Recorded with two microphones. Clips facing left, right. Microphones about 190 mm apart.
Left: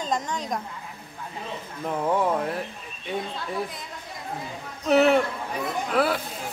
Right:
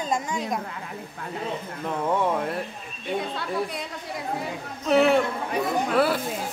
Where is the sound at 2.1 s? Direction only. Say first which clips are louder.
Left 1 dB; centre (ahead or behind).